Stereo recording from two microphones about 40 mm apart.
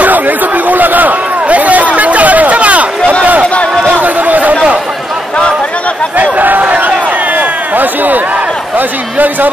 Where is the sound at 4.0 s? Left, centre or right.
Right.